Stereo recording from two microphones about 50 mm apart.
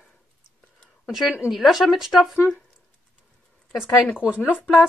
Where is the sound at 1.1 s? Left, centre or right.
Centre.